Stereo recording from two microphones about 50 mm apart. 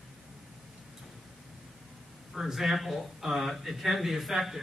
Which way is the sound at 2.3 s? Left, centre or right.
Centre.